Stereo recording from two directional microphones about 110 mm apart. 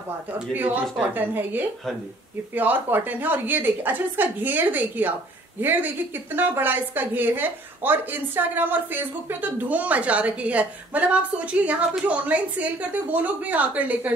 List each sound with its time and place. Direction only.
0.3 s a woman's voice: 15° right (ahead or behind)